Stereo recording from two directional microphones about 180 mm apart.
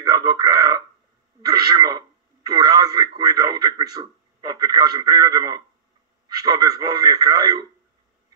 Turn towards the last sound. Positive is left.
turn(degrees=-20)  # may be behind; listen again after turning